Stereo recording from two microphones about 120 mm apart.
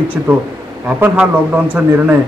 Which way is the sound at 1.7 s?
15° right (ahead or behind).